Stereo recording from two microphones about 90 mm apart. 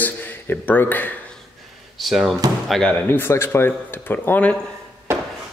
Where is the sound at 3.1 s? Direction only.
25° left (ahead or behind).